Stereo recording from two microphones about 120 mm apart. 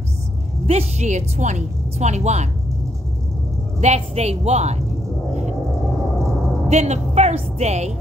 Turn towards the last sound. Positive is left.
turn(degrees=-65)  # may be behind; listen again after turning